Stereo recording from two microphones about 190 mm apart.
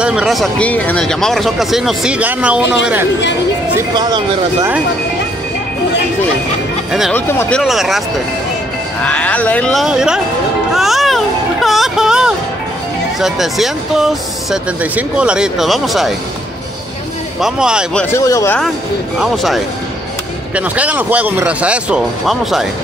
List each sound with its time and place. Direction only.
0.0 s speech: 5° right (ahead or behind)
3.9 s speech: 20° right (ahead or behind)
6.9 s speech: centre (ahead or behind)
7.2 s speech: 10° left (ahead or behind)
9.0 s speech: 5° left (ahead or behind)
10.7 s music: centre (ahead or behind)
13.2 s speech: centre (ahead or behind)
17.4 s speech: 5° right (ahead or behind)
18.1 s speech: 15° left (ahead or behind)
19.1 s speech: centre (ahead or behind)